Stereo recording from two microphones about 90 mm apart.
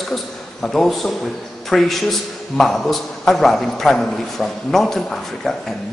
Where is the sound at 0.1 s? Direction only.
5° left (ahead or behind).